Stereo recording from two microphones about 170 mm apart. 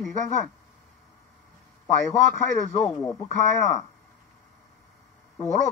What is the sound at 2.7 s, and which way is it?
Speech, 20° left (ahead or behind).